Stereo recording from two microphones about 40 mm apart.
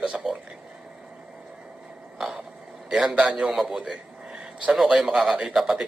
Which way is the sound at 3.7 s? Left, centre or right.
Centre.